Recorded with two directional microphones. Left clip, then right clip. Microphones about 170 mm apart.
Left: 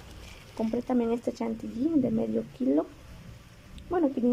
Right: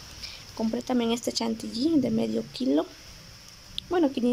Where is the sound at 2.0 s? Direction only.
5° right (ahead or behind).